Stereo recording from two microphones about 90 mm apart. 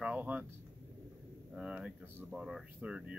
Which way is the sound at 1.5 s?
10° right (ahead or behind).